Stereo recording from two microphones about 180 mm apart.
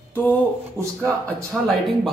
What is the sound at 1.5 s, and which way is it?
Speech, centre (ahead or behind).